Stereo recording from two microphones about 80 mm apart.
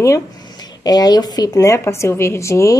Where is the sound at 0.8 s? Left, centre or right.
Left.